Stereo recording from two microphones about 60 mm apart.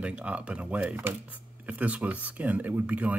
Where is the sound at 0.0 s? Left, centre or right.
Right.